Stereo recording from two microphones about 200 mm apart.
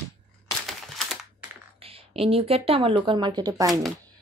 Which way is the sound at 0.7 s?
Centre (ahead or behind).